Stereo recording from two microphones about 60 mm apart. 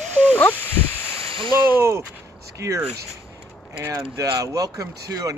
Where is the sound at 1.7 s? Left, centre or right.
Right.